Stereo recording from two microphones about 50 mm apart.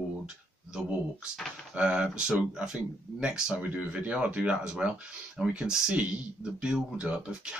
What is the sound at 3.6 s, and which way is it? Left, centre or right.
Speech, right.